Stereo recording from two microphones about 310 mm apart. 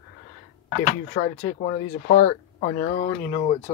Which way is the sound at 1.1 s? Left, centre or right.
Centre.